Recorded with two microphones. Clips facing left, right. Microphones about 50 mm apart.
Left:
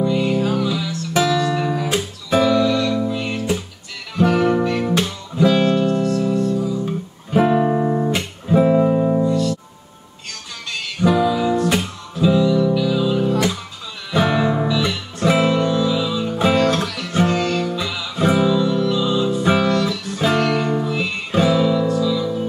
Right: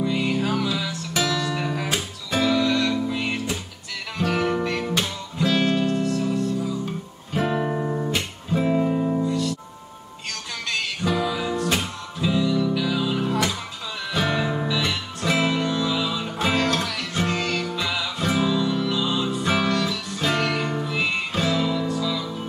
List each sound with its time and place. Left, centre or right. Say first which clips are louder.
0.0 s music: left 5 dB; centre
4.2 s guitar: left 7 dB; centre
4.6 s music: left 5 dB; centre
7.3 s music: left 8 dB; centre
8.5 s music: left 7 dB; centre
9.3 s music: left 5 dB; centre
10.7 s music: left 6 dB; centre
14.1 s music: left 7 dB; centre
14.7 s music: left 4 dB; centre
21.3 s music: left 7 dB; centre